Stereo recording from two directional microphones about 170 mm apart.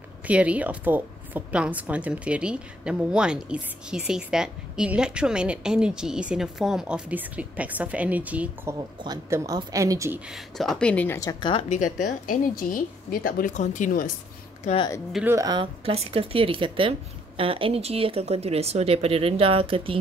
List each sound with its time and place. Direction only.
0.3 s a woman's voice: 10° right (ahead or behind)
8.7 s speech: 25° right (ahead or behind)
10.3 s speech: centre (ahead or behind)
11.1 s a woman's voice: 25° left (ahead or behind)
11.7 s a woman's voice: 50° left (ahead or behind)
15.2 s speech: 20° right (ahead or behind)